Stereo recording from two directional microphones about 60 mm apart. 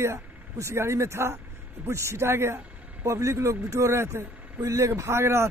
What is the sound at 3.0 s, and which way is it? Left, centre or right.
Speech, right.